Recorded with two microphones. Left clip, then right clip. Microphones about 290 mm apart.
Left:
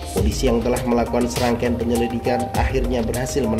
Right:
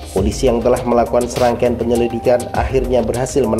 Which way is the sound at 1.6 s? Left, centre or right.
Centre.